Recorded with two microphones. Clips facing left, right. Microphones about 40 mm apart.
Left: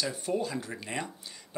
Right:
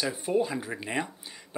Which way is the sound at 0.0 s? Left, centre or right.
Centre.